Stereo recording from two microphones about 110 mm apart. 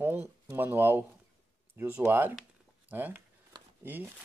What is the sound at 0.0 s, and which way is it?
Speech, 20° right (ahead or behind).